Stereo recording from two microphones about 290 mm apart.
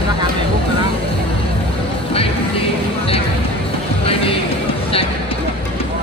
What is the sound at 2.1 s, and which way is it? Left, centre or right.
Music, centre.